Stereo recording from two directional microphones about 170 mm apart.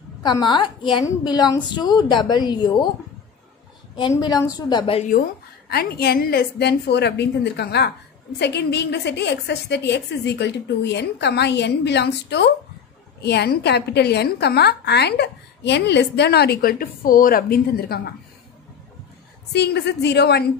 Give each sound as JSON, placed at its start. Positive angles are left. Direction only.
{"t": 0.2, "sound": "a woman's voice", "side_deg": 25}
{"t": 4.1, "sound": "a woman's voice", "side_deg": 20}
{"t": 5.7, "sound": "a woman's voice", "side_deg": 65}
{"t": 13.2, "sound": "a woman's voice", "side_deg": 75}
{"t": 19.5, "sound": "a woman's voice", "side_deg": 75}